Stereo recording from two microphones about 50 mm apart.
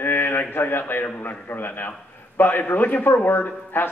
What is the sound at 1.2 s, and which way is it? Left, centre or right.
Speech, left.